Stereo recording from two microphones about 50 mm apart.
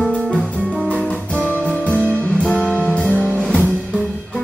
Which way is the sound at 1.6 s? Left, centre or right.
Left.